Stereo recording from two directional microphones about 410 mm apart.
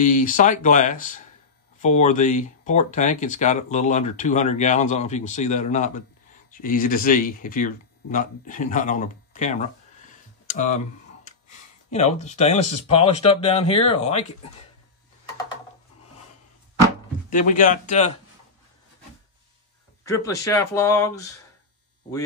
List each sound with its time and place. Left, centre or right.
0.0 s speech: centre
11.9 s speech: centre
17.3 s speech: centre
20.1 s speech: centre